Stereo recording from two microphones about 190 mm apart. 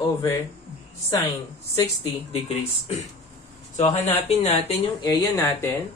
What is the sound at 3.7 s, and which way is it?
A woman's voice, 35° left (ahead or behind).